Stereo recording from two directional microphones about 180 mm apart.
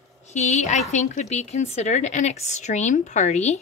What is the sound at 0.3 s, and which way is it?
Speech, 40° left (ahead or behind).